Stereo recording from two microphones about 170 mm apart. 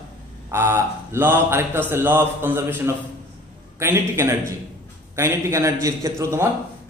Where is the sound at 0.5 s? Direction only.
15° right (ahead or behind).